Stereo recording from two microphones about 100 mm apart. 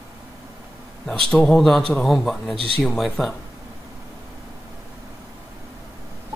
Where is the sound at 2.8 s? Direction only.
5° left (ahead or behind).